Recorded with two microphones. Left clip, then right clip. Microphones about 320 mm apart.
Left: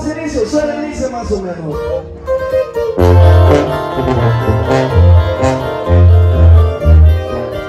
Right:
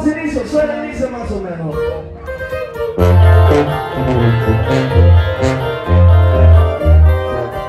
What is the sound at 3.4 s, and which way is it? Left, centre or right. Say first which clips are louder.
Music: left 2 dB; left.